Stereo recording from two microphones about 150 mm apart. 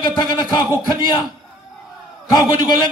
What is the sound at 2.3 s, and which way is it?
Speech, 25° left (ahead or behind).